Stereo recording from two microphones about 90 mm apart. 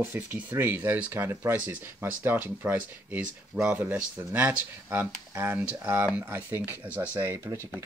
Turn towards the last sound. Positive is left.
turn(degrees=-20)  # may be behind; listen again after turning